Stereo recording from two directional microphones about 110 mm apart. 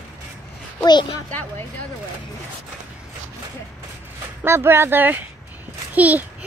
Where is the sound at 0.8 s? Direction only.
40° left (ahead or behind).